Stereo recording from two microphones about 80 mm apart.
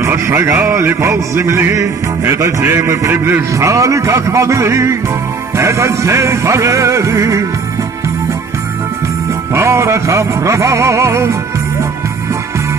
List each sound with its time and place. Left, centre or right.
0.0 s speech: right
9.5 s speech: right